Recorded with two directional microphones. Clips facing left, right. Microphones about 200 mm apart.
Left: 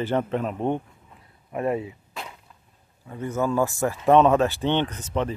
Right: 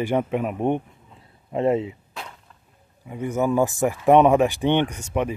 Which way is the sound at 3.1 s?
15° right (ahead or behind).